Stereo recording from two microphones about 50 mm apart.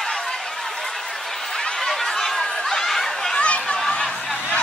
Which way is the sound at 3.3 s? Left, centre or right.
Left.